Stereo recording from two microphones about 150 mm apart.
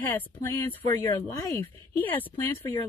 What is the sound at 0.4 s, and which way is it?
Speech, 20° left (ahead or behind).